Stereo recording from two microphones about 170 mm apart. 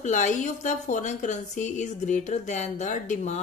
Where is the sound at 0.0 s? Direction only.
45° left (ahead or behind).